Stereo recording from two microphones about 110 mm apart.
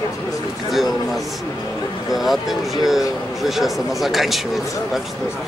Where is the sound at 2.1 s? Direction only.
Centre (ahead or behind).